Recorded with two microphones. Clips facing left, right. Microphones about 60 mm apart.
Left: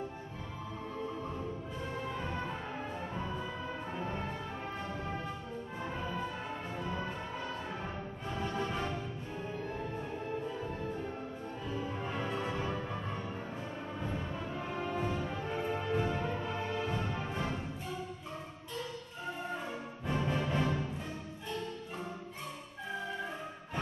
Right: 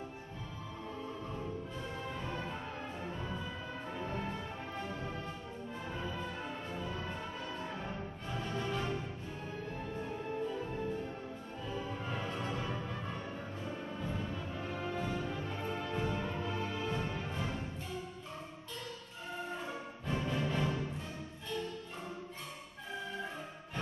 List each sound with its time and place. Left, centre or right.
2.2 s music: centre
5.8 s music: centre
11.7 s music: centre
14.0 s music: centre
20.1 s music: centre